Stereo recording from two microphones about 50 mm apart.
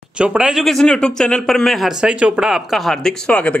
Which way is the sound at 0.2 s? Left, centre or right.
Centre.